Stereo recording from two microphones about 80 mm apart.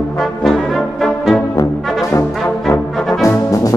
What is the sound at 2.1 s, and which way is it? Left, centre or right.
Brass instrument, left.